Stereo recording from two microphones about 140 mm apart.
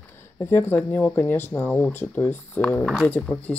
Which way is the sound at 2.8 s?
Centre (ahead or behind).